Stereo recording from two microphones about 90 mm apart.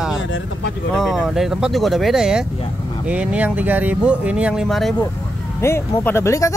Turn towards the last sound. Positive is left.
turn(degrees=35)  # may be behind; listen again after turning